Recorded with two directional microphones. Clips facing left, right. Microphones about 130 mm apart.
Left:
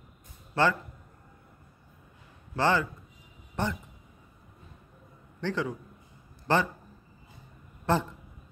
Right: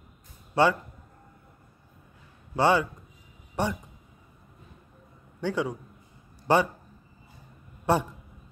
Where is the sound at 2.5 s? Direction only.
15° right (ahead or behind).